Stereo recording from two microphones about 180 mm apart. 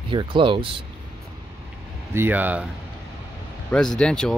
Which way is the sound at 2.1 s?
10° right (ahead or behind).